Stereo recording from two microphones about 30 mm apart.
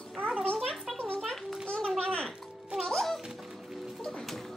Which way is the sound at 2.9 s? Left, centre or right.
Centre.